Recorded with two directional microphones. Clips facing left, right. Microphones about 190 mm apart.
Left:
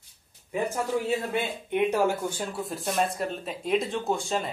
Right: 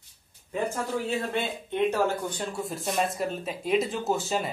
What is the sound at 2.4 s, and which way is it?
Speech, centre (ahead or behind).